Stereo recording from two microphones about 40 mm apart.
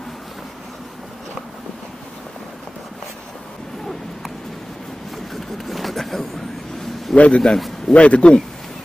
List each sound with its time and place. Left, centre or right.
5.3 s vehicle: centre
7.2 s speech: left
7.4 s a man's voice: centre
7.9 s speech: left